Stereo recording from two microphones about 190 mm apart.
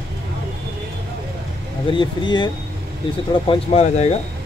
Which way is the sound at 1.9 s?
25° left (ahead or behind).